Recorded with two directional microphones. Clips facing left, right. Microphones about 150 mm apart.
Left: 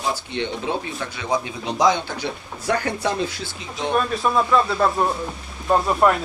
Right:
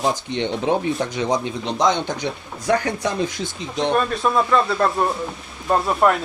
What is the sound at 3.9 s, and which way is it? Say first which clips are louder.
Speech: even; centre (ahead or behind).